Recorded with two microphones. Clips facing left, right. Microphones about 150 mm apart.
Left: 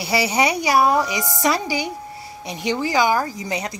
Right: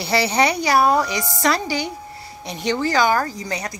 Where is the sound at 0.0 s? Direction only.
10° left (ahead or behind).